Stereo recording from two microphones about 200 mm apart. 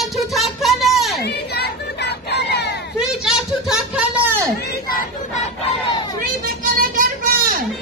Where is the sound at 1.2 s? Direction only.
55° left (ahead or behind).